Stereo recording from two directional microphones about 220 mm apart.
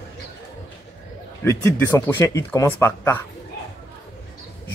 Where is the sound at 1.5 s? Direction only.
10° left (ahead or behind).